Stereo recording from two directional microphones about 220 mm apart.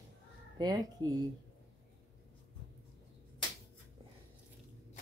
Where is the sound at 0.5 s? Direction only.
20° right (ahead or behind).